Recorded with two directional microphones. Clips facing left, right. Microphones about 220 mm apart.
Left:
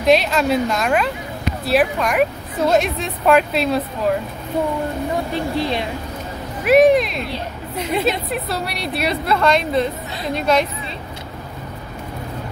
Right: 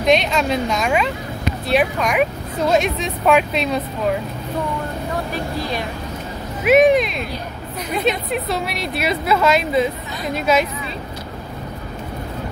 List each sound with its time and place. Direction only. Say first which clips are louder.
0.0 s a woman's voice: left 1 dB; centre (ahead or behind)
5.3 s speech: left 3 dB; 25° left (ahead or behind)
6.6 s a woman's voice: left 1 dB; centre (ahead or behind)